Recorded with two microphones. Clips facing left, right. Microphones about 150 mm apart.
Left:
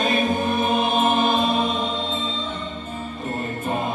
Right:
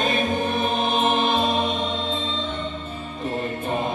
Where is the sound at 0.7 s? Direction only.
45° left (ahead or behind).